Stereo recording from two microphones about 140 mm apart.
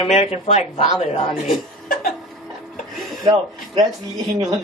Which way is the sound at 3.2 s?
30° right (ahead or behind).